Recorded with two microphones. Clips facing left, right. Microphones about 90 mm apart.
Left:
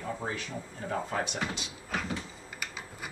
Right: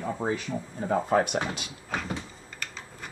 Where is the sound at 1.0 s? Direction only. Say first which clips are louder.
Right 9 dB; 50° right (ahead or behind).